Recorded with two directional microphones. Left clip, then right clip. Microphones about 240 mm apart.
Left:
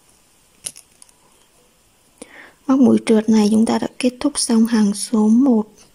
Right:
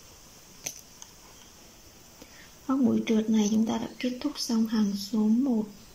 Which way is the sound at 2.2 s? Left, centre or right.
Left.